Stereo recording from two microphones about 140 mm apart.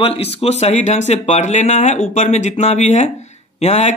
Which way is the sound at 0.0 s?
45° left (ahead or behind).